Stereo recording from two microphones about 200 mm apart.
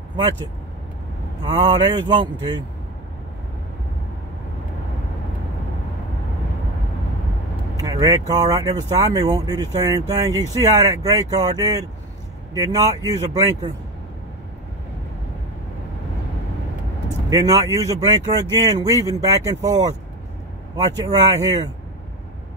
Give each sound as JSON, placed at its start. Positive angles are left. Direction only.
{"t": 1.4, "sound": "speech", "side_deg": -20}
{"t": 7.7, "sound": "speech", "side_deg": -20}
{"t": 17.3, "sound": "speech", "side_deg": -15}